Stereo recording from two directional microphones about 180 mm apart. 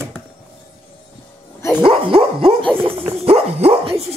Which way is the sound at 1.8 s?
30° right (ahead or behind).